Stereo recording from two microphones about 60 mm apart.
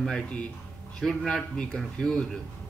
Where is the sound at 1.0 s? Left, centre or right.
Centre.